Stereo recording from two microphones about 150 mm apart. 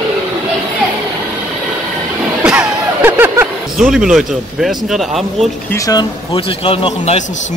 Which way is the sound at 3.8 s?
5° right (ahead or behind).